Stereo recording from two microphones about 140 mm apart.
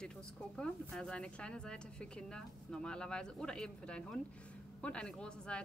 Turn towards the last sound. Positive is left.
turn(degrees=5)  # may be behind; listen again after turning